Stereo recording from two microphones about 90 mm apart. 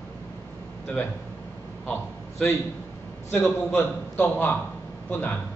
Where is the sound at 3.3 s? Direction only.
20° left (ahead or behind).